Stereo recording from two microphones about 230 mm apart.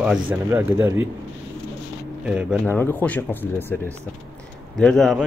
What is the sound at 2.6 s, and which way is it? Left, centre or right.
Speech, centre.